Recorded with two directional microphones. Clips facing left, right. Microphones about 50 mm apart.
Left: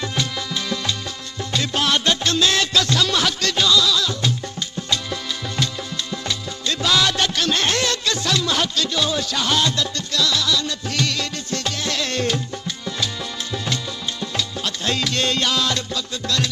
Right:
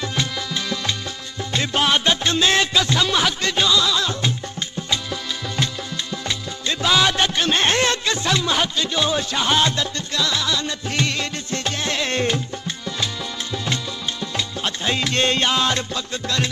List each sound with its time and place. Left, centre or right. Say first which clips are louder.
1.5 s music: right 1 dB; right
6.6 s music: right 1 dB; centre
14.3 s music: right 1 dB; right